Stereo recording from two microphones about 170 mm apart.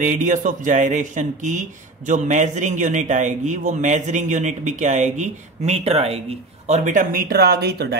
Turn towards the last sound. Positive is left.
turn(degrees=-70)  # may be behind; listen again after turning